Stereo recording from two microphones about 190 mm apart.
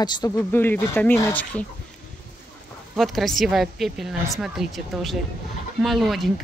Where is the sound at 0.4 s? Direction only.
10° left (ahead or behind).